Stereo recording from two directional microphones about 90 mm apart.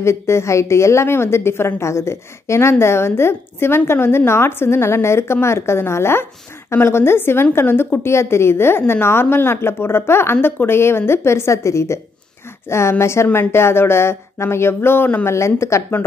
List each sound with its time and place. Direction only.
0.0 s a woman's voice: 30° left (ahead or behind)
15.2 s a woman's voice: 30° left (ahead or behind)